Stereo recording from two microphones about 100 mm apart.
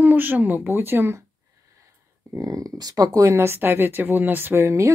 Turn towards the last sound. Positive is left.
turn(degrees=-30)  # may be behind; listen again after turning